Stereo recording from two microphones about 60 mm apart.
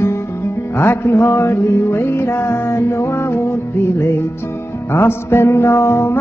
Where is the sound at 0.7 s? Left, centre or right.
Left.